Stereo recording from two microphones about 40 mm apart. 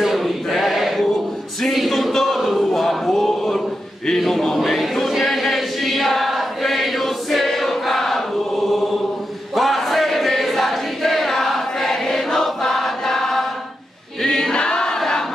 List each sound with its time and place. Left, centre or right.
0.0 s male singing: centre
1.7 s a sound: centre
4.6 s choir: centre
15.0 s crowd: centre